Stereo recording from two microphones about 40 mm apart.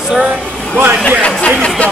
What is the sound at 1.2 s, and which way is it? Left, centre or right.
Speech, left.